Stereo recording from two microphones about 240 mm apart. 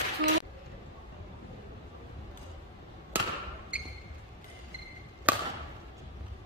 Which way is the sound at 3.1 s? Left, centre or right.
Centre.